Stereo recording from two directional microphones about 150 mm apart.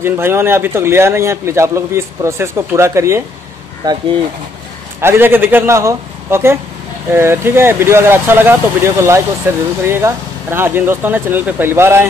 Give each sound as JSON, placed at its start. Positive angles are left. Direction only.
{"t": 0.0, "sound": "a man's voice", "side_deg": -15}
{"t": 5.0, "sound": "a man's voice", "side_deg": -15}